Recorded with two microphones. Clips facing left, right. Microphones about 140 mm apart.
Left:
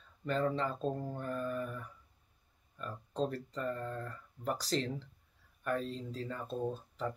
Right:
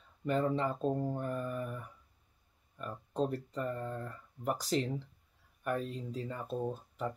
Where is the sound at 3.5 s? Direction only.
15° right (ahead or behind).